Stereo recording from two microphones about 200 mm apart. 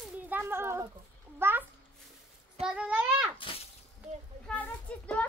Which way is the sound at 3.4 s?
25° left (ahead or behind).